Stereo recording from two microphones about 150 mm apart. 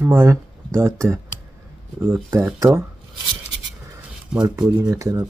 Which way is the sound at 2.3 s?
20° right (ahead or behind).